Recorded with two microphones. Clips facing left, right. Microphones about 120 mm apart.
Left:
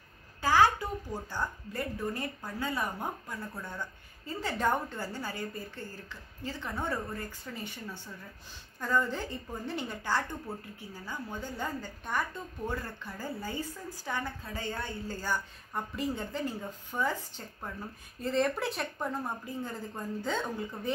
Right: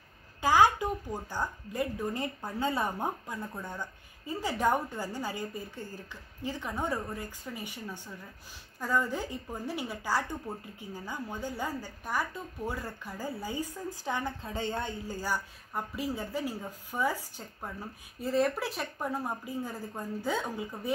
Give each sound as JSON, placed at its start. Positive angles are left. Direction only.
{"t": 0.4, "sound": "a woman's voice", "side_deg": -15}
{"t": 15.2, "sound": "a woman's voice", "side_deg": -5}